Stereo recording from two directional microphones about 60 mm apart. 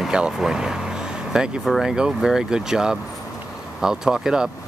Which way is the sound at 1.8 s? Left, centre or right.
Centre.